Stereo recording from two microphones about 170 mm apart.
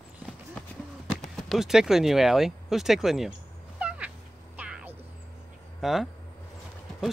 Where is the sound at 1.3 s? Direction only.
Centre (ahead or behind).